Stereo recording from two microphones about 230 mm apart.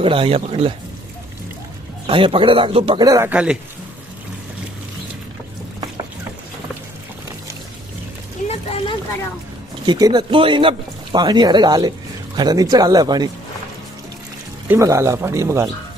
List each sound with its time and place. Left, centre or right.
0.0 s speech: right
2.0 s speech: right; by 3.5 s centre
8.5 s a sound: left
9.8 s speech: centre
14.7 s speech: centre